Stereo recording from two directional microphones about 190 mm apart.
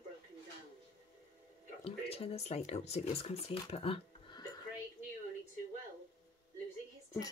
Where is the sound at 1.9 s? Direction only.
30° left (ahead or behind).